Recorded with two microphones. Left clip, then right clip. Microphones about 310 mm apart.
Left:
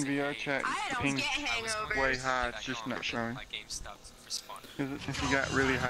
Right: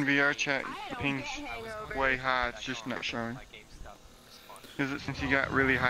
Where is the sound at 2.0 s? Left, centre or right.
Centre.